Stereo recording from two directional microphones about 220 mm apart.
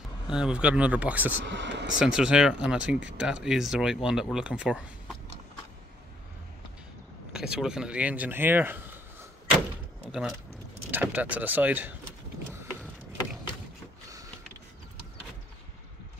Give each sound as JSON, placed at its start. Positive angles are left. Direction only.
{"t": 0.3, "sound": "speech", "side_deg": -5}
{"t": 1.4, "sound": "speech", "side_deg": -55}
{"t": 2.0, "sound": "speech", "side_deg": -5}
{"t": 7.3, "sound": "speech", "side_deg": -5}
{"t": 10.9, "sound": "speech", "side_deg": -10}